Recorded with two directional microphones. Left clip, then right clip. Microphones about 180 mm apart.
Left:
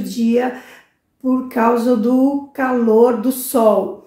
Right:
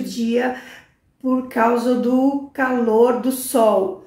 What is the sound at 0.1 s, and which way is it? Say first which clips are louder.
A woman's voice: left 3 dB; 5° left (ahead or behind).